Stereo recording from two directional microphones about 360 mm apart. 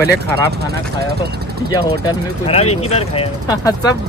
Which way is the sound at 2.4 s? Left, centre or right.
Centre.